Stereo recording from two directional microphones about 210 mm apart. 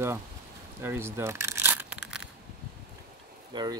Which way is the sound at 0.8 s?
10° right (ahead or behind).